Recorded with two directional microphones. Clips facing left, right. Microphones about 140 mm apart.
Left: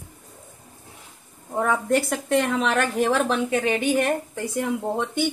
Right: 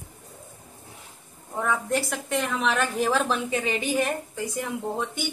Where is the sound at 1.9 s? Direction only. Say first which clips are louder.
Left 6 dB; 55° left (ahead or behind).